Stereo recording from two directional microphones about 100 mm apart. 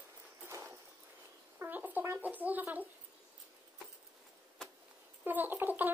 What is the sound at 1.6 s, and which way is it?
Bird, 15° right (ahead or behind).